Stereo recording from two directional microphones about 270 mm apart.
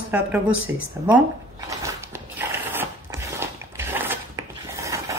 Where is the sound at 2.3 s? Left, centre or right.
Centre.